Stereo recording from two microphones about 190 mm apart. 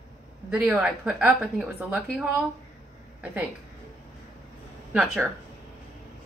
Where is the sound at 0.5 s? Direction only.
5° right (ahead or behind).